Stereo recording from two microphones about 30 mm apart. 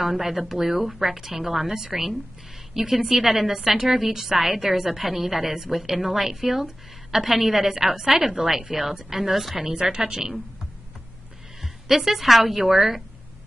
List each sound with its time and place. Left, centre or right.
0.0 s a woman's voice: centre
9.7 s a woman's voice: right
11.6 s a woman's voice: centre